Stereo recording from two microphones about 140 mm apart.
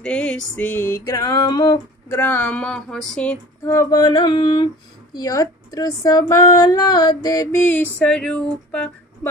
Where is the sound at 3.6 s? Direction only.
20° left (ahead or behind).